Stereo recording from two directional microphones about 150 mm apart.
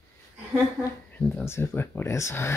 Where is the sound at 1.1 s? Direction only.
10° left (ahead or behind).